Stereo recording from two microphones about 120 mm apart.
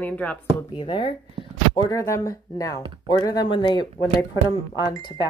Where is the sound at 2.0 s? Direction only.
25° left (ahead or behind).